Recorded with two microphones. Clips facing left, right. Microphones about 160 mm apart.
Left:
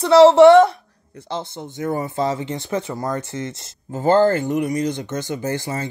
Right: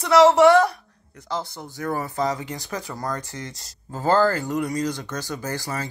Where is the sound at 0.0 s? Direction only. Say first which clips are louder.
Left 5 dB; 30° left (ahead or behind).